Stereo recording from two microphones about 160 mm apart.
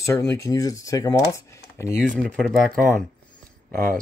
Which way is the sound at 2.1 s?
Centre (ahead or behind).